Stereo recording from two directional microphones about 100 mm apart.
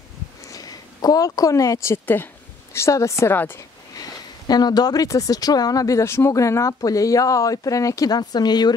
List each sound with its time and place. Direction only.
0.5 s a sound: 40° left (ahead or behind)
2.7 s a woman's voice: 30° left (ahead or behind)
3.9 s speech: 40° left (ahead or behind)